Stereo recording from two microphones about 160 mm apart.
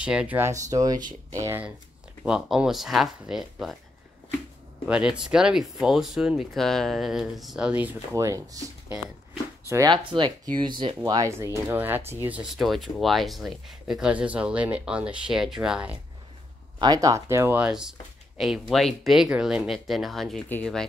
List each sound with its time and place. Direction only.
0.0 s speech: 5° right (ahead or behind)
0.5 s speech: 20° right (ahead or behind)
2.2 s speech: 5° right (ahead or behind)
4.8 s speech: 5° right (ahead or behind)
9.7 s speech: 20° right (ahead or behind)
10.1 s speech: 30° right (ahead or behind)
11.1 s speech: 20° right (ahead or behind)
16.7 s speech: 25° right (ahead or behind); by 20.8 s 10° left (ahead or behind)